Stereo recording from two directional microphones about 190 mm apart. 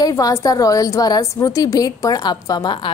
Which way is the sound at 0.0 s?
15° left (ahead or behind).